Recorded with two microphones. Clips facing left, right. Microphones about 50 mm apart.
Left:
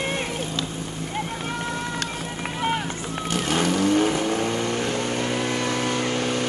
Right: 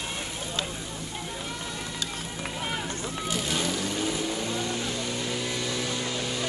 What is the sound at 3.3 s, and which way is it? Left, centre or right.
Vehicle, left.